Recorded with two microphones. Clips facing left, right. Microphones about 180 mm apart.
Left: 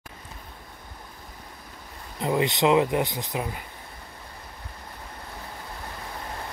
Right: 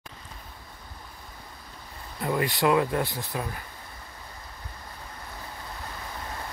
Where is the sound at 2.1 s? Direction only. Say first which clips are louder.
Left 3 dB; 20° left (ahead or behind).